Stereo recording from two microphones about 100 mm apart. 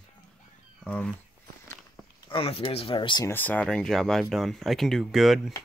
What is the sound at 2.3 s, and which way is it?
Speech, 70° left (ahead or behind).